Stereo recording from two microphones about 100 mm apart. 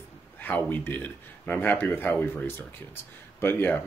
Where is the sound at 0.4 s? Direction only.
20° left (ahead or behind).